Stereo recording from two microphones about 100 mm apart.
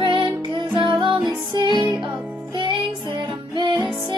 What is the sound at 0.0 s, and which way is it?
Music, 55° right (ahead or behind).